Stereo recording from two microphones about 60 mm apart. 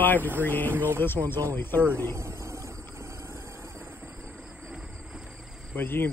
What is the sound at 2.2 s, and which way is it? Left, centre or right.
Cricket, right.